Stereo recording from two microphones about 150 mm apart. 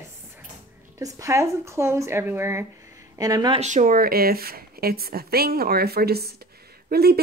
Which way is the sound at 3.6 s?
50° right (ahead or behind).